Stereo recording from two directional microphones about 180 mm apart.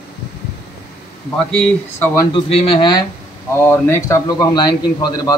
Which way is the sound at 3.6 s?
15° left (ahead or behind).